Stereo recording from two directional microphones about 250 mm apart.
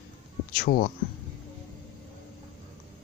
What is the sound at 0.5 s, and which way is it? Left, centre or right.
Speech, left.